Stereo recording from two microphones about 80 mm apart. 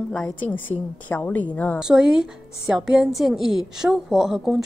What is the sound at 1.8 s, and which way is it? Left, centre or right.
A woman's voice, centre.